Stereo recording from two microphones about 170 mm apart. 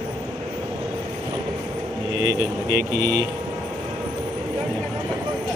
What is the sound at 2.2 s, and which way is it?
Speech, 70° right (ahead or behind).